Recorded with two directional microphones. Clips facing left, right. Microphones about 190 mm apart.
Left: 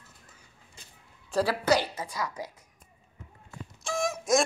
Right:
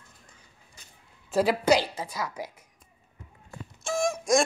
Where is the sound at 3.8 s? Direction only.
Centre (ahead or behind).